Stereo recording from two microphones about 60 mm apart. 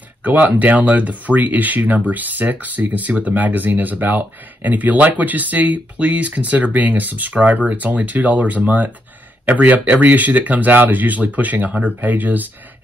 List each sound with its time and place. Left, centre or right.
0.2 s speech: right